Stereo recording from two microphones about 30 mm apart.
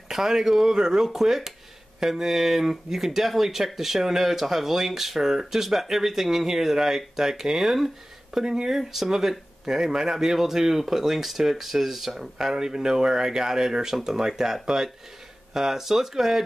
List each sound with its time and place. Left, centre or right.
0.1 s speech: centre
1.0 s speech: centre
8.4 s speech: centre
8.7 s speech: centre
12.5 s speech: right